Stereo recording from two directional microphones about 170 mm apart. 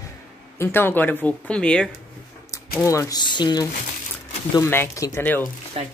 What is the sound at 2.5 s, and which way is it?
Speech, 20° left (ahead or behind).